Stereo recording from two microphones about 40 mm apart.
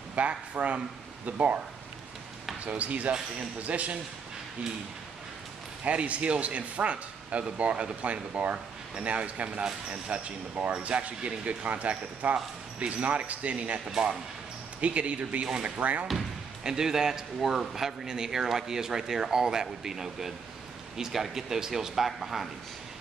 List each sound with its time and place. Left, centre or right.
0.1 s speech: right
2.6 s speech: right
5.9 s speech: right
14.8 s speech: right
16.6 s speech: centre